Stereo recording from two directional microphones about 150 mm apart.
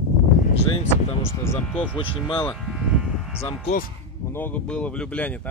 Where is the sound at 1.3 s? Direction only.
15° left (ahead or behind).